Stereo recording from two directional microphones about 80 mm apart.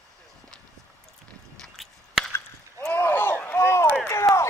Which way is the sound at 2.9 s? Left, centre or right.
Left.